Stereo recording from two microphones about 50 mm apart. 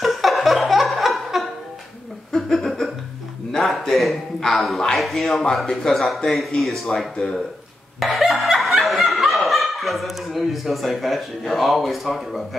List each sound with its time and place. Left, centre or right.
0.0 s laughter: centre
2.3 s a sound: centre
3.5 s a man's voice: centre
8.0 s snicker: centre